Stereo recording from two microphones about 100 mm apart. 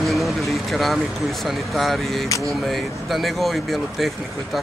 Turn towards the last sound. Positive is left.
turn(degrees=0)  # may be behind; listen again after turning